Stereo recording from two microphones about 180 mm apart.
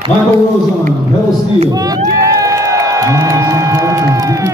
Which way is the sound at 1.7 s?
20° right (ahead or behind).